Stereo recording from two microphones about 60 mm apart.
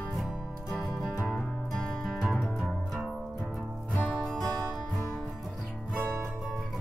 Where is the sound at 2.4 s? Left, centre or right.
Centre.